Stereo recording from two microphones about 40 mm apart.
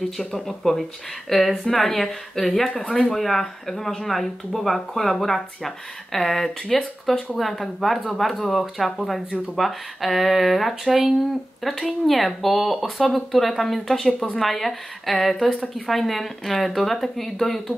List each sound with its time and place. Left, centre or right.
0.3 s a woman's voice: centre
2.9 s speech: centre
3.2 s a woman's voice: centre
14.0 s speech: centre
14.4 s a woman's voice: centre